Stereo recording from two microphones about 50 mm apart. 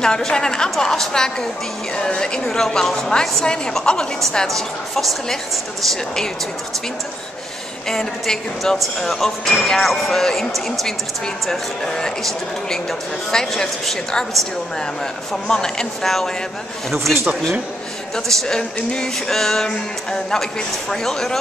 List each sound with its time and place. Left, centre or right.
0.0 s a man's voice: centre
7.9 s a man's voice: centre
15.4 s a man's voice: centre
16.0 s speech: centre
18.1 s a man's voice: centre